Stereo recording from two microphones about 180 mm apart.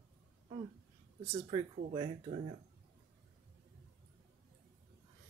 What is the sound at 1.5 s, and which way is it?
Speech, 25° right (ahead or behind).